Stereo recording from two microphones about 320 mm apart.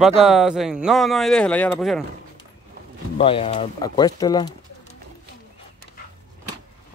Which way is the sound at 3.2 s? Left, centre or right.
Centre.